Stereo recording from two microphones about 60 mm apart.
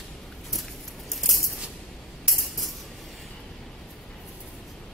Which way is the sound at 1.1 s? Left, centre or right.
Centre.